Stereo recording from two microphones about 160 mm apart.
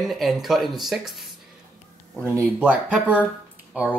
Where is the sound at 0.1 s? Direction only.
Centre (ahead or behind).